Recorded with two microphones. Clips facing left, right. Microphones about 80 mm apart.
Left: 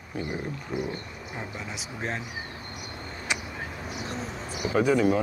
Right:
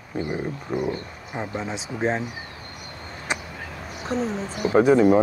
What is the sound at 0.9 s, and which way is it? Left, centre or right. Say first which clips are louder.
Speech: right 6 dB; right.